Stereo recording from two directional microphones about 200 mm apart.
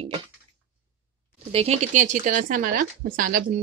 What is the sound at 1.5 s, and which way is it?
Speech, 30° right (ahead or behind).